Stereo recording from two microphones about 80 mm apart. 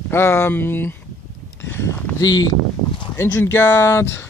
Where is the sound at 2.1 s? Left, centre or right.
Left.